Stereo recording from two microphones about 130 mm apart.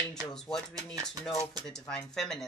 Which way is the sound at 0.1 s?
5° left (ahead or behind).